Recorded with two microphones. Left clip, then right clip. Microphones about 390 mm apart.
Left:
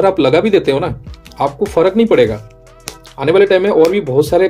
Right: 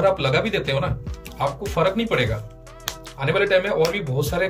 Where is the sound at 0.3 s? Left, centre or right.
Centre.